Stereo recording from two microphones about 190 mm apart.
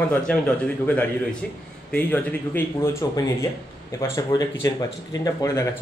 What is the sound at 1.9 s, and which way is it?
Speech, 10° left (ahead or behind).